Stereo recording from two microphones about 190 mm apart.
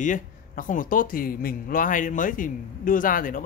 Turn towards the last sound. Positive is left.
turn(degrees=45)  # may be behind; listen again after turning